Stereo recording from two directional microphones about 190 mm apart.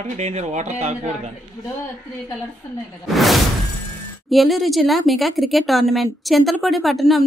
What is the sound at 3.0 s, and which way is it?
Speech, centre (ahead or behind).